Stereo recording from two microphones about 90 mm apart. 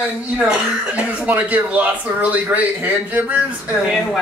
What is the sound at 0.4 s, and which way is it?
Speech, 15° right (ahead or behind).